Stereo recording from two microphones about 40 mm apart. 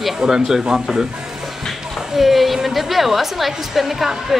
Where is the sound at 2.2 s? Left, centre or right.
Centre.